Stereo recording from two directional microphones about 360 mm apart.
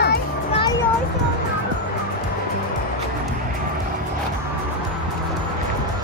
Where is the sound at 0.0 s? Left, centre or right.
Left.